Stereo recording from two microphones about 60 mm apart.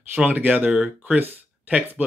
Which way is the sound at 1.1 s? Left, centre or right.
Right.